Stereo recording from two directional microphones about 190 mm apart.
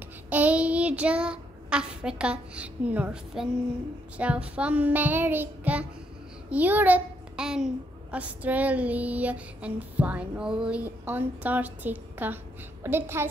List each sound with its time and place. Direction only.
0.3 s child singing: 10° right (ahead or behind)
4.2 s a child's voice: 5° right (ahead or behind)